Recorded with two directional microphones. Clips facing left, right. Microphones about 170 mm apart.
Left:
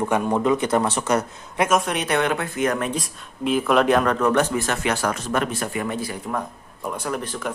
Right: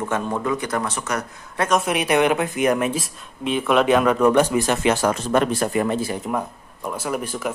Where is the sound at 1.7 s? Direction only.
5° right (ahead or behind); by 6.3 s 25° right (ahead or behind).